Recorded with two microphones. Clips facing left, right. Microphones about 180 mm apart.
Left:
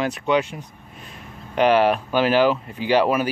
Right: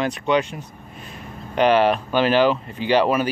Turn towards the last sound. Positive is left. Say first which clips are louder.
# even
turn(degrees=10)  # may be behind; listen again after turning